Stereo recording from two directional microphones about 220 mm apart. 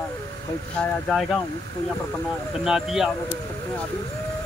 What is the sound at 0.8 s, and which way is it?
Speech, 5° left (ahead or behind).